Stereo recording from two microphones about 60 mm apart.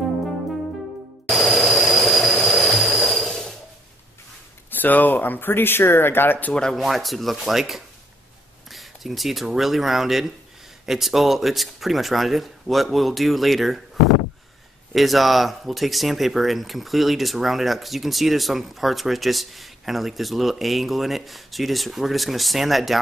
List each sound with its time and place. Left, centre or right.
1.3 s a sound: centre
4.6 s speech: left
6.7 s speech: centre
15.0 s speech: centre